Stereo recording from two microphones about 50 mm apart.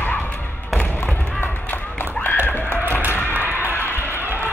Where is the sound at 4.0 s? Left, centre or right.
Left.